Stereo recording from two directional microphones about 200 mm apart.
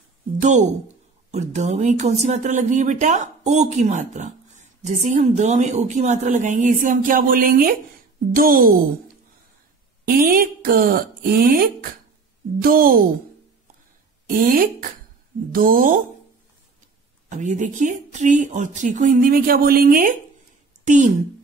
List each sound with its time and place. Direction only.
0.4 s speech: 35° right (ahead or behind)
10.0 s speech: 45° right (ahead or behind)
14.2 s speech: 45° right (ahead or behind)
17.3 s a woman's voice: 40° right (ahead or behind)